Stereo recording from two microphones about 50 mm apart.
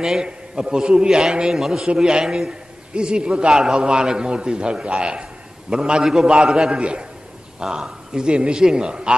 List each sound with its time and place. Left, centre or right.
0.0 s a man's voice: centre